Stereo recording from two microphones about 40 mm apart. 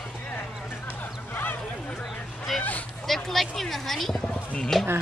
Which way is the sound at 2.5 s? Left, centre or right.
Centre.